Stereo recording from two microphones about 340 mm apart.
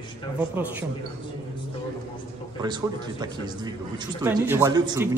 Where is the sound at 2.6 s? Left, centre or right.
Centre.